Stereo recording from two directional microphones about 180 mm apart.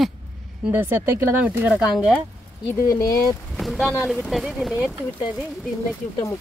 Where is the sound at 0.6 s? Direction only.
10° right (ahead or behind).